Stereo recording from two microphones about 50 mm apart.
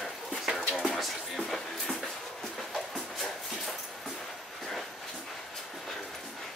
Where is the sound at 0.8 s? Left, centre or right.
Centre.